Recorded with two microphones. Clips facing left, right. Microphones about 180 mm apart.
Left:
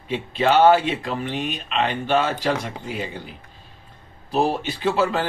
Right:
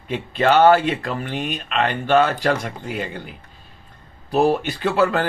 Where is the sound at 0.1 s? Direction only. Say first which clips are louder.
Right 2 dB; 50° right (ahead or behind).